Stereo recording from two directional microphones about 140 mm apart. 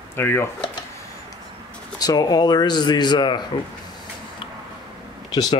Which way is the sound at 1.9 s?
25° left (ahead or behind).